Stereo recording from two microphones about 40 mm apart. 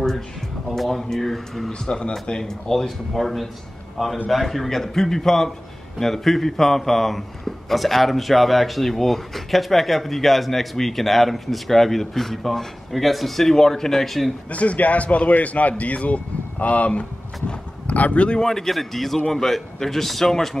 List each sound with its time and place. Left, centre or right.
0.7 s a man's voice: centre
1.7 s speech: left
2.4 s a man's voice: centre
14.5 s speech: left
18.4 s a man's voice: centre